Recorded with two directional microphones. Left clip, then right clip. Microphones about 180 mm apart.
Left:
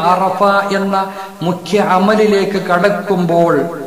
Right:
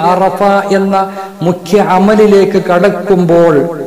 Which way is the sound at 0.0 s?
45° right (ahead or behind).